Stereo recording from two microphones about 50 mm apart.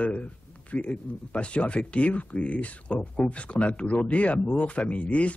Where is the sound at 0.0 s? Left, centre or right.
Left.